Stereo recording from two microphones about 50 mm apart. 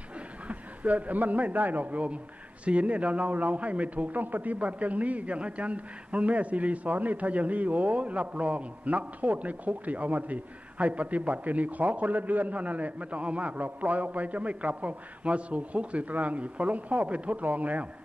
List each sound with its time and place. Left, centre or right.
0.5 s a man's voice: right